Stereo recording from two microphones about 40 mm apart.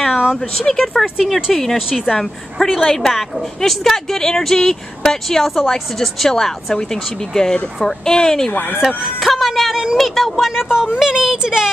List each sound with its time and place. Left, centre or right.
0.6 s a woman's voice: centre
8.8 s speech: centre
10.5 s speech: centre